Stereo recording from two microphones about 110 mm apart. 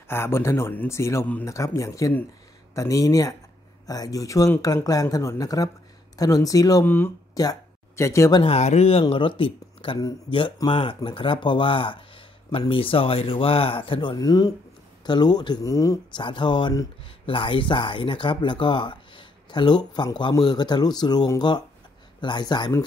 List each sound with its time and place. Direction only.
0.1 s speech: 25° left (ahead or behind)
8.5 s speech: 80° left
9.1 s speech: 55° left (ahead or behind)
14.1 s speech: 35° left (ahead or behind)
16.2 s speech: 45° left (ahead or behind)